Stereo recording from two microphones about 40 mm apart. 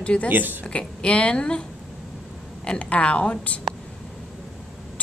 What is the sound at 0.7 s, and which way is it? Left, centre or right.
Speech, left.